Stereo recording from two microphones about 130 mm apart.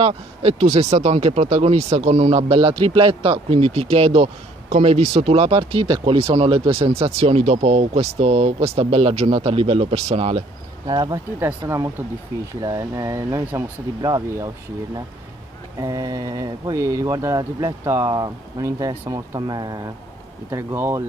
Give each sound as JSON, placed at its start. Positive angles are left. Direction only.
{"t": 0.0, "sound": "speech", "side_deg": -45}
{"t": 10.9, "sound": "speech", "side_deg": -35}
{"t": 15.8, "sound": "speech", "side_deg": -25}